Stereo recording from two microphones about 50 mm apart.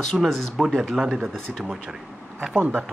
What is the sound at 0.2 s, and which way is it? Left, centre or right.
A man's voice, centre.